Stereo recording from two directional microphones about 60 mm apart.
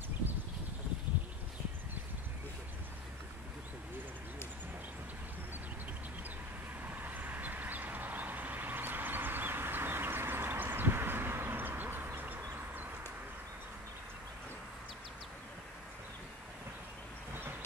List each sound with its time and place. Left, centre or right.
6.8 s vehicle: right